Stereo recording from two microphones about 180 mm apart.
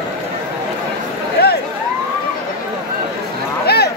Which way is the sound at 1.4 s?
65° left (ahead or behind).